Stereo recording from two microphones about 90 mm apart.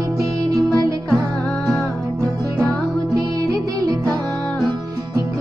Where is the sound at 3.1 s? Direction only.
45° right (ahead or behind).